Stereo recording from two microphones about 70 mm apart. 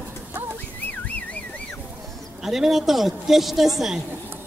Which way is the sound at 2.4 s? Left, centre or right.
Centre.